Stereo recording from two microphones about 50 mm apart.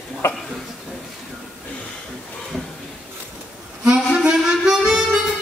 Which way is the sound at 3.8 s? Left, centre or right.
Centre.